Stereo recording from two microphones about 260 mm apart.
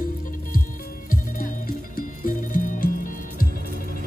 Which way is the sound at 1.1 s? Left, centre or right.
Left.